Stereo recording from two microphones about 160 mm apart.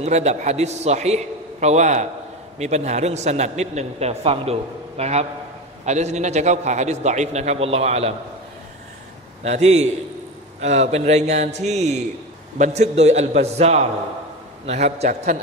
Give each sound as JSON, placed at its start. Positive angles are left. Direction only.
{"t": 0.0, "sound": "a man's voice", "side_deg": -45}
{"t": 9.4, "sound": "a man's voice", "side_deg": -45}